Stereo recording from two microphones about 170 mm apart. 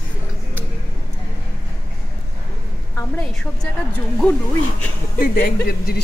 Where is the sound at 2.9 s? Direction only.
15° left (ahead or behind).